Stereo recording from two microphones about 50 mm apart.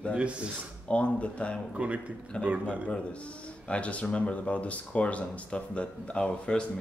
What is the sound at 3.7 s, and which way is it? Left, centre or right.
Speech, left.